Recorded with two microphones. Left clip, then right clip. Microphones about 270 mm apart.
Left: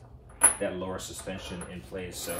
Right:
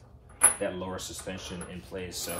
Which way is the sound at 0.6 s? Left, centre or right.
Centre.